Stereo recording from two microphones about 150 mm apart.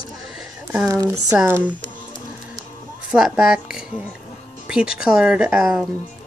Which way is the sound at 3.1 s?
5° right (ahead or behind).